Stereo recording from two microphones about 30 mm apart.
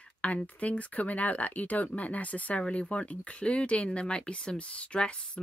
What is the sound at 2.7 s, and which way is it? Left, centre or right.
A woman's voice, left.